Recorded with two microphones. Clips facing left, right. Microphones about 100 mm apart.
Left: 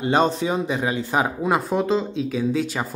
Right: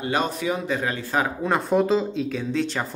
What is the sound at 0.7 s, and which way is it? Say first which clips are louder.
Speech: left 2 dB; 15° left (ahead or behind).